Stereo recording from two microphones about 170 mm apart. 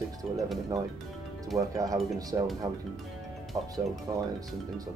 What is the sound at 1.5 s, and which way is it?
Speech, 20° right (ahead or behind).